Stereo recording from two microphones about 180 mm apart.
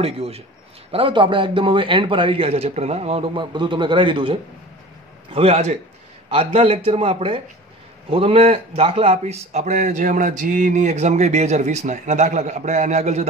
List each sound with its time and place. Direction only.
0.0 s a man's voice: 35° right (ahead or behind)